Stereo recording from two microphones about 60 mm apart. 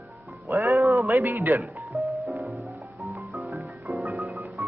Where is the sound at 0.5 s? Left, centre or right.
Right.